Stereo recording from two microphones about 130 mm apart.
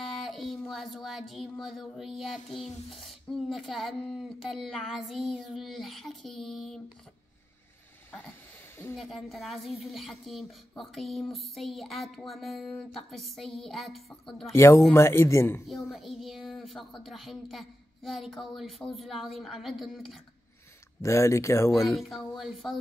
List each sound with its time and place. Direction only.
0.0 s child singing: centre (ahead or behind)
8.9 s child singing: centre (ahead or behind)
14.5 s speech: 20° left (ahead or behind)
15.6 s child singing: centre (ahead or behind)
21.0 s speech: 20° left (ahead or behind)
21.9 s child singing: centre (ahead or behind)